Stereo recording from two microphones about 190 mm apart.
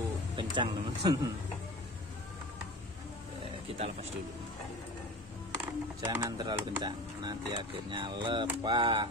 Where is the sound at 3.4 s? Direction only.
30° right (ahead or behind).